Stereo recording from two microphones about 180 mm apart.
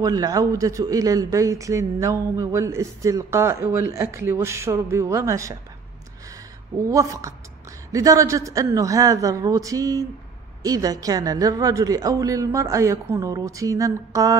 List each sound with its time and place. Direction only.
0.0 s a man's voice: 20° right (ahead or behind)
6.8 s a man's voice: 15° right (ahead or behind)